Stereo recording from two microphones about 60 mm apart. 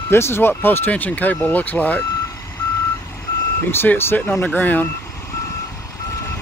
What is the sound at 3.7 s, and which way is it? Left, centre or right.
Speech, left.